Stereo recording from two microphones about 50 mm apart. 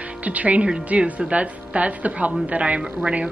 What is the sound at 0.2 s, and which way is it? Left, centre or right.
Speech, right.